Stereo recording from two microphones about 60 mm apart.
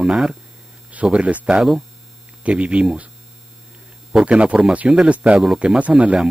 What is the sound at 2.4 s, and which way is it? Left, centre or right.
Speech, right.